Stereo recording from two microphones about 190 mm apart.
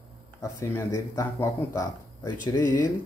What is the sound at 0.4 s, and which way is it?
Speech, 15° left (ahead or behind).